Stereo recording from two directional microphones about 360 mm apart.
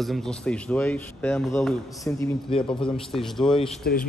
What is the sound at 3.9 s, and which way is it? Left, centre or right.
Speech, left.